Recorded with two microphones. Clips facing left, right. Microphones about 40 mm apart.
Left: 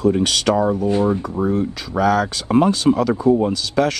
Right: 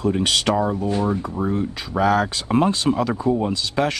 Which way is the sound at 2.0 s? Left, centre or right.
Centre.